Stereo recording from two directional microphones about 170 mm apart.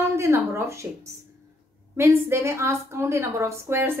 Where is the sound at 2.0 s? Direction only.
15° right (ahead or behind).